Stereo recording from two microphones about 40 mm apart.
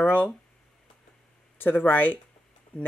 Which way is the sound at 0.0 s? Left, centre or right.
Left.